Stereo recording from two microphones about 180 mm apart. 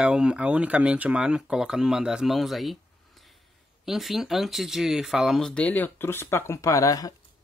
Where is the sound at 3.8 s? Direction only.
Centre (ahead or behind); by 7.1 s 20° left (ahead or behind).